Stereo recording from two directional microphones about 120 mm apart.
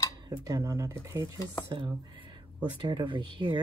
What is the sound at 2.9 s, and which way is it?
Speech, 40° right (ahead or behind).